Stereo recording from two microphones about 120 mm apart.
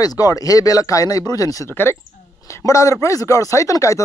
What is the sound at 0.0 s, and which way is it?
A man's voice, 30° left (ahead or behind).